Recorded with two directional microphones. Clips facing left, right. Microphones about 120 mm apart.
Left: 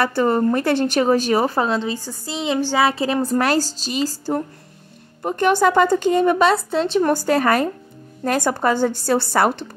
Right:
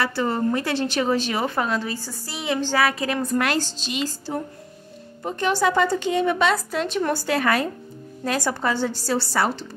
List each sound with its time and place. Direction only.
0.0 s a woman's voice: 50° left (ahead or behind); by 2.9 s 20° left (ahead or behind)
2.9 s a woman's voice: 30° left (ahead or behind)
5.2 s a woman's voice: 55° left (ahead or behind); by 7.1 s 30° left (ahead or behind)
7.1 s a woman's voice: 45° left (ahead or behind)